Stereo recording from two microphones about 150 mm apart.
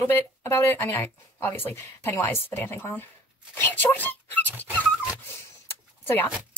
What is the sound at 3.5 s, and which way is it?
Dog, 15° left (ahead or behind).